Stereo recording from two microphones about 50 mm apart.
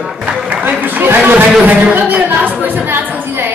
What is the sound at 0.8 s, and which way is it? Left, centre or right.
A woman's voice, right.